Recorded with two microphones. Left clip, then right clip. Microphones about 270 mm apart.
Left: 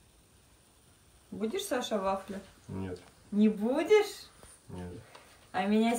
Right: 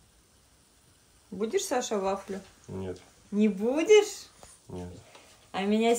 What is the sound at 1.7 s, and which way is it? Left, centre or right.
Speech, right.